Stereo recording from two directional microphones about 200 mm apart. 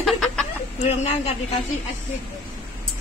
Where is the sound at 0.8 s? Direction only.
30° left (ahead or behind).